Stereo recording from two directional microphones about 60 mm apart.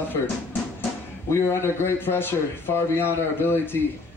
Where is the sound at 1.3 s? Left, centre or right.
Left.